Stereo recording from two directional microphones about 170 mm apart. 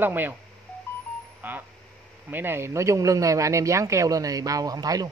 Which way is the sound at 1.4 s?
10° right (ahead or behind).